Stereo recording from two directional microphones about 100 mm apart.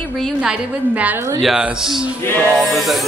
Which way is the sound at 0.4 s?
10° right (ahead or behind).